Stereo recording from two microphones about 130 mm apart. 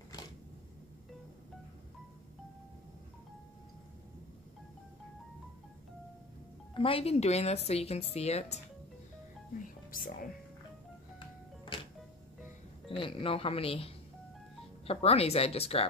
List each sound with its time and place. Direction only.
6.7 s speech: 45° left (ahead or behind)
9.8 s music: 90° left
12.9 s speech: 45° left (ahead or behind)